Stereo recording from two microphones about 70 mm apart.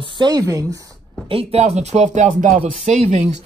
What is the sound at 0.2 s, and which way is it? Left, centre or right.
Speech, right.